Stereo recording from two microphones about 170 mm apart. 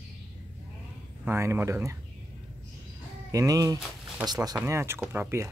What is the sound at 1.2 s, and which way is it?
Speech, 15° right (ahead or behind).